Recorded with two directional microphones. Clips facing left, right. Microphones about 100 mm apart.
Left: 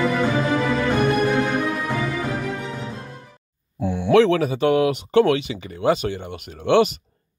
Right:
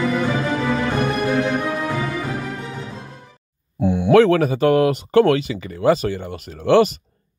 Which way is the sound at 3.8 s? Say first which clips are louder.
Right 5 dB; 20° right (ahead or behind).